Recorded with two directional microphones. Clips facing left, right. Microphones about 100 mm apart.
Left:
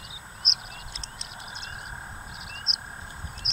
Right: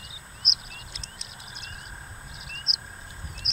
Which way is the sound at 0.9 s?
Centre (ahead or behind).